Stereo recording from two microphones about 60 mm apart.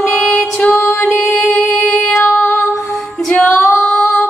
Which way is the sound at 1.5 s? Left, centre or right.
Centre.